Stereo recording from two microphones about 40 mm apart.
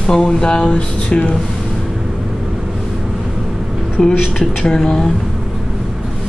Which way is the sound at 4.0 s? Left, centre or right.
Centre.